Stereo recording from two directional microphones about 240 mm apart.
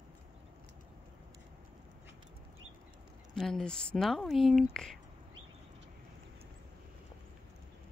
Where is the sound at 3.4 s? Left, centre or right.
Centre.